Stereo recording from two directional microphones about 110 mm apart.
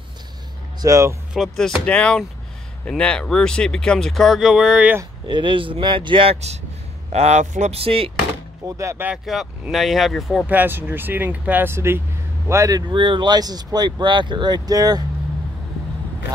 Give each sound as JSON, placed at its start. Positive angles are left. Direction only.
{"t": 0.8, "sound": "speech", "side_deg": -30}
{"t": 1.3, "sound": "speech", "side_deg": 0}
{"t": 1.9, "sound": "speech", "side_deg": 10}
{"t": 5.3, "sound": "speech", "side_deg": -50}
{"t": 7.1, "sound": "speech", "side_deg": -85}
{"t": 8.6, "sound": "speech", "side_deg": -25}
{"t": 9.2, "sound": "speech", "side_deg": 0}
{"t": 10.4, "sound": "speech", "side_deg": -15}
{"t": 12.9, "sound": "speech", "side_deg": -50}